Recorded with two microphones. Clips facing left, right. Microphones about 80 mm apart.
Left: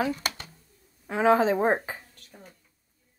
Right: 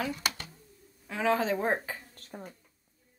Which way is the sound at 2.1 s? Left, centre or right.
Right.